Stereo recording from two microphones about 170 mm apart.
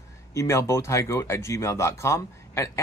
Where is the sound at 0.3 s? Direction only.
15° left (ahead or behind).